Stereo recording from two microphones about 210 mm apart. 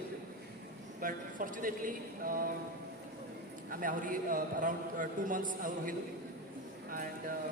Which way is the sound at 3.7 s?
40° right (ahead or behind).